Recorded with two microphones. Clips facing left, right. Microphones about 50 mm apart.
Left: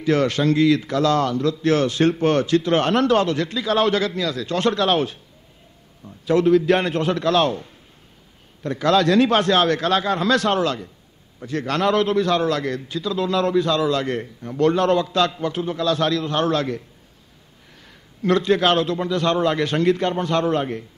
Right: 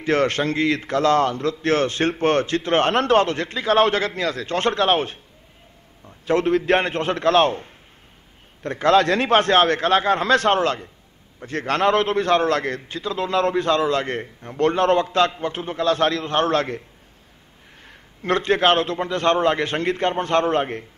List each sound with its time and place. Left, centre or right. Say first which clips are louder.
0.0 s a man's voice: left 1 dB; right
6.2 s a man's voice: left 3 dB; right
17.8 s a man's voice: left 3 dB; right